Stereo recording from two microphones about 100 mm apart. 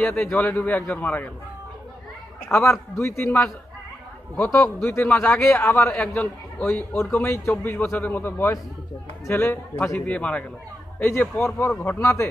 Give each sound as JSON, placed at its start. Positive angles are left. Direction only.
{"t": 0.0, "sound": "a man's voice", "side_deg": 15}
{"t": 2.5, "sound": "a man's voice", "side_deg": 30}
{"t": 4.4, "sound": "a man's voice", "side_deg": 25}
{"t": 5.9, "sound": "a man's voice", "side_deg": 10}